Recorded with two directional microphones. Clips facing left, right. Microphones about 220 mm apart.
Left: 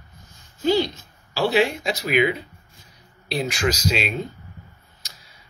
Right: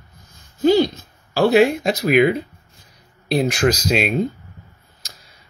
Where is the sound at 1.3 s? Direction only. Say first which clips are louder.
Right 6 dB; 50° right (ahead or behind).